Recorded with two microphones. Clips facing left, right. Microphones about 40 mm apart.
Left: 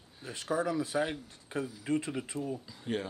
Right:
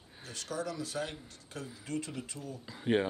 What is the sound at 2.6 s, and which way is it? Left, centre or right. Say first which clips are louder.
Speech: right 6 dB; right.